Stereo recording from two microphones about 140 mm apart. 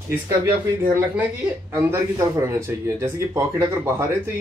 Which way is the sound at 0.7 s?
15° right (ahead or behind).